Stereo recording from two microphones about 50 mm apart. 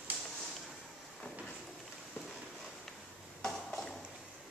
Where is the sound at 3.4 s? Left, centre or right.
Centre.